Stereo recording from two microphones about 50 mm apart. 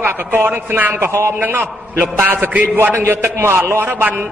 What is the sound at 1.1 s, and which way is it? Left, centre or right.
Speech, right.